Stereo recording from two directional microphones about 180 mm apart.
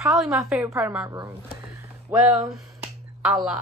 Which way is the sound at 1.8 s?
15° right (ahead or behind).